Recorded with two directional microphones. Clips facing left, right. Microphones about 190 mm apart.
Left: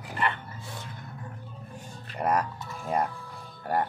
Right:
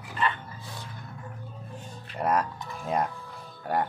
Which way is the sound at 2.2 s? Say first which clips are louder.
Even; 10° left (ahead or behind).